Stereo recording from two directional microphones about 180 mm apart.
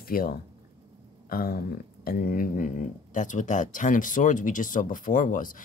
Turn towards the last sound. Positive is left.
turn(degrees=50)  # may be behind; listen again after turning